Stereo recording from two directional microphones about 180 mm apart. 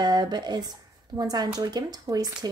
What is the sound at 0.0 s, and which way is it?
Speech, 25° right (ahead or behind).